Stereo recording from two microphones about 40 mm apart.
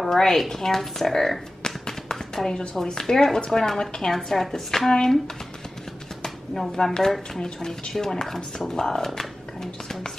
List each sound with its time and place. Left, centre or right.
0.0 s speech: centre
6.2 s a sound: centre
6.7 s a woman's voice: centre